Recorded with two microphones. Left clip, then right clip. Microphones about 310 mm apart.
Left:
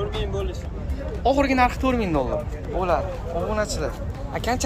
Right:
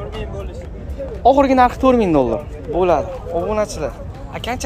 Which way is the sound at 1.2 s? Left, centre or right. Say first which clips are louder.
Right 8 dB; centre.